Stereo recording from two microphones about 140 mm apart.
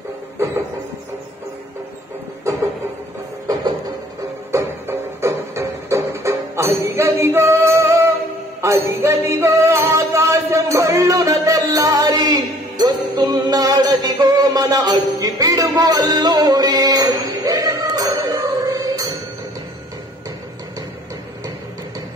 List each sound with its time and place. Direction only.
4.5 s music: 20° right (ahead or behind)